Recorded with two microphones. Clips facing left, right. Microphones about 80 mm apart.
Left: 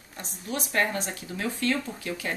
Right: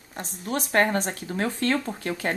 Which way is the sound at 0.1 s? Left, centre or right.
Right.